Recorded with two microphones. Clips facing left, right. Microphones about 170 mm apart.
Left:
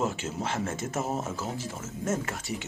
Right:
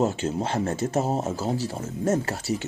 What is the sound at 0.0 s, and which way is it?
Speech, 30° right (ahead or behind).